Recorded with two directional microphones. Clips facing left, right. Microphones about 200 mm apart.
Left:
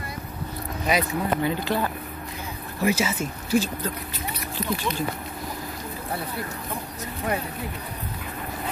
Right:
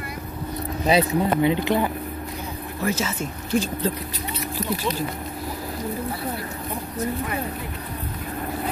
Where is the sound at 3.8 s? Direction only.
30° right (ahead or behind).